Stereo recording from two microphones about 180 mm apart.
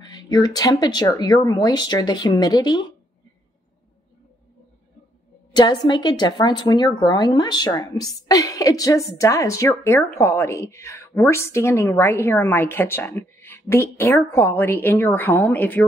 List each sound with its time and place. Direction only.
0.0 s speech: 20° left (ahead or behind)
5.5 s a woman's voice: 25° left (ahead or behind)